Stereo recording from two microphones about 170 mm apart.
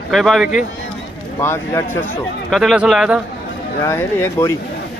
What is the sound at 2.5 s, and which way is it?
Speech, centre (ahead or behind).